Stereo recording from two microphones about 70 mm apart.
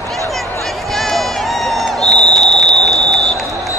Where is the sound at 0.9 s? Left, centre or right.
Centre.